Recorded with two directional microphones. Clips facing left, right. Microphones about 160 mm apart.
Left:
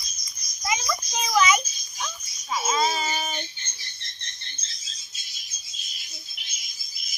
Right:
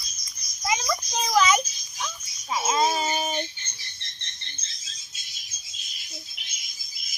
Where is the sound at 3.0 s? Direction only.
35° right (ahead or behind).